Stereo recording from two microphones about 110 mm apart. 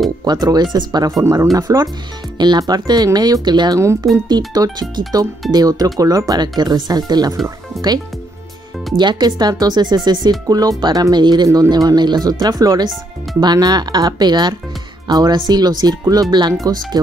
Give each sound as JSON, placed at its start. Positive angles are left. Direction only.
{"t": 0.2, "sound": "speech", "side_deg": -35}
{"t": 1.2, "sound": "speech", "side_deg": -30}
{"t": 3.8, "sound": "speech", "side_deg": -25}
{"t": 4.6, "sound": "speech", "side_deg": -40}
{"t": 8.9, "sound": "speech", "side_deg": -40}